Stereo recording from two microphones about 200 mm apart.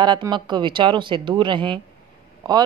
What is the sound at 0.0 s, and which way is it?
Speech, 20° right (ahead or behind).